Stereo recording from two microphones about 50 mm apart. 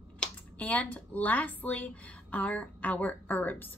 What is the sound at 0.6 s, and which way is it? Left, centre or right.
A woman's voice, left.